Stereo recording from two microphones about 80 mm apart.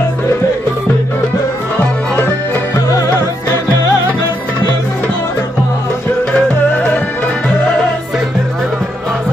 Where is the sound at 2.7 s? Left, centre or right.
Left.